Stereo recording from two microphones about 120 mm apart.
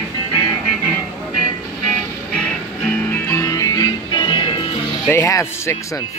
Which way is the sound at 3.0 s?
20° left (ahead or behind).